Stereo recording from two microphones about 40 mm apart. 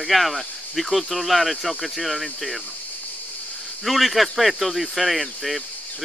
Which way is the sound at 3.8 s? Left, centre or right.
Centre.